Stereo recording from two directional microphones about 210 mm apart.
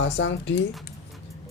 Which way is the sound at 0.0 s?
60° left (ahead or behind).